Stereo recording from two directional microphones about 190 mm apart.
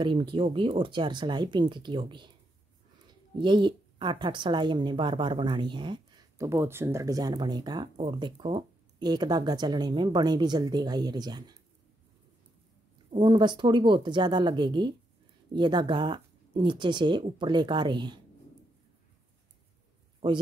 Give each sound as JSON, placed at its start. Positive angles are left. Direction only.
{"t": 0.0, "sound": "a woman's voice", "side_deg": -25}
{"t": 3.3, "sound": "a woman's voice", "side_deg": -25}
{"t": 13.1, "sound": "a woman's voice", "side_deg": -25}